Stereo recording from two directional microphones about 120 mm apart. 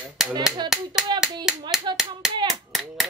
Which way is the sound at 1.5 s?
5° right (ahead or behind).